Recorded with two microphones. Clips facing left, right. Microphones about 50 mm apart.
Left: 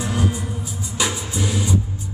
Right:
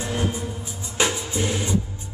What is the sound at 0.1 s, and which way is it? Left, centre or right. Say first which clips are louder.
Music: left 2 dB; right.